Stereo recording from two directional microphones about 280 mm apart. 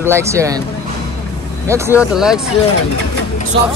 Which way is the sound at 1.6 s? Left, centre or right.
Centre.